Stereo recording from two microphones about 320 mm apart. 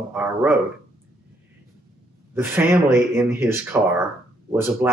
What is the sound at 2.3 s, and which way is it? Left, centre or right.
A man's voice, centre.